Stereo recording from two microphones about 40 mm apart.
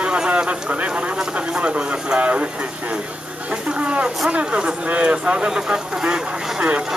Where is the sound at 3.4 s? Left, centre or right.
Right.